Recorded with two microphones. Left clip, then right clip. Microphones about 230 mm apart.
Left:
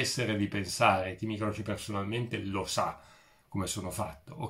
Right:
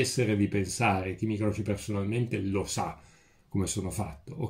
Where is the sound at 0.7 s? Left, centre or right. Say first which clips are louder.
Left 6 dB; left.